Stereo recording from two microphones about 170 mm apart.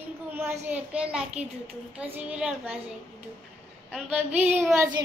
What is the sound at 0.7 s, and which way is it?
Speech, 5° right (ahead or behind).